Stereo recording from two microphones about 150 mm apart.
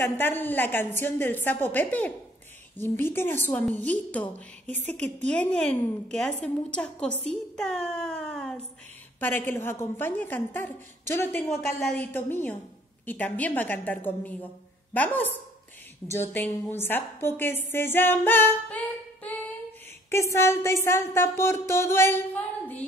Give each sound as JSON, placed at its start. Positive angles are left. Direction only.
{"t": 0.0, "sound": "a woman's voice", "side_deg": 15}
{"t": 7.2, "sound": "a sound", "side_deg": 5}
{"t": 9.2, "sound": "a woman's voice", "side_deg": 15}
{"t": 16.1, "sound": "a woman's voice", "side_deg": 15}